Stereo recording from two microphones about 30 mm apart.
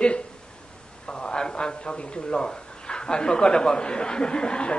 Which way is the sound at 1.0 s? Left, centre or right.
Left.